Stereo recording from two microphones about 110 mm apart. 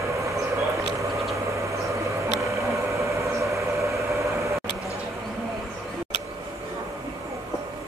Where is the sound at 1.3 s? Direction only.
30° right (ahead or behind).